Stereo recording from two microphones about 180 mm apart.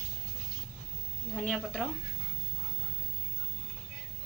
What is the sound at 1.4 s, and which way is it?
Speech, 5° left (ahead or behind).